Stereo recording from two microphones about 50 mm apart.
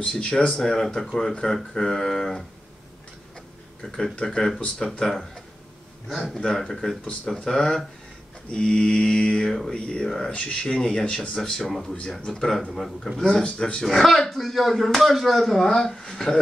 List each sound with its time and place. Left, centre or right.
0.1 s mantra: left
0.5 s speech: centre
3.8 s speech: centre
8.5 s mantra: centre
9.5 s a man's voice: centre
13.2 s mantra: centre
13.8 s speech: centre